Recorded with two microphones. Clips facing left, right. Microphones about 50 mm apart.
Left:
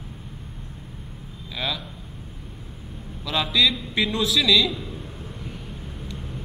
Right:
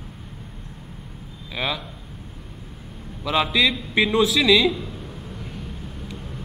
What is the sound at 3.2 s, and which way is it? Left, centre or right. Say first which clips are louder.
A man's voice: right 2 dB; right.